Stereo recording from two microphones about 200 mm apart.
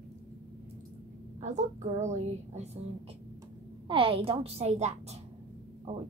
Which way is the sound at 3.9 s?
25° right (ahead or behind).